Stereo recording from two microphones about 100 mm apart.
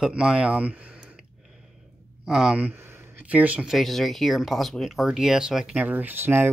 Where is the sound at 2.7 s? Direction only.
25° right (ahead or behind).